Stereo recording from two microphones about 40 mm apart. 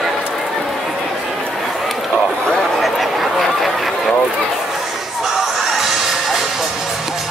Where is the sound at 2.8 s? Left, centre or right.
Centre.